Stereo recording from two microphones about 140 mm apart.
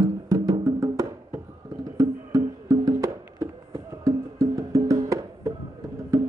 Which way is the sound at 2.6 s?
25° right (ahead or behind).